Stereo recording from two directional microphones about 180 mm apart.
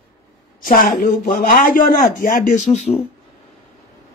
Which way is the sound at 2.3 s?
40° left (ahead or behind).